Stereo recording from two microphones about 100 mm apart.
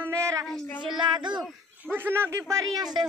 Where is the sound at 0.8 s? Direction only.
50° right (ahead or behind).